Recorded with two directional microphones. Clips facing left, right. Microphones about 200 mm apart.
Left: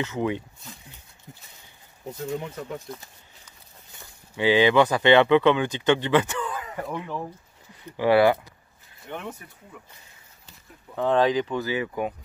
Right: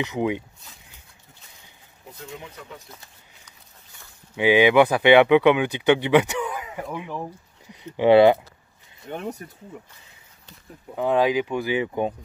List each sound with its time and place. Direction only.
0.0 s speech: 15° right (ahead or behind)
4.4 s speech: 15° right (ahead or behind)
9.1 s speech: 40° right (ahead or behind)
11.0 s speech: 10° right (ahead or behind)